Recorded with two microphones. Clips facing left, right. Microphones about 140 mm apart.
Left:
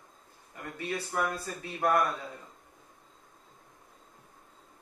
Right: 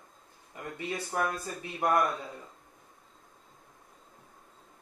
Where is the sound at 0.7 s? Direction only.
20° right (ahead or behind).